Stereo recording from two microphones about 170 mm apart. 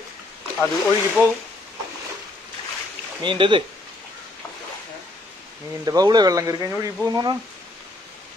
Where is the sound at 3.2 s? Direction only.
30° right (ahead or behind).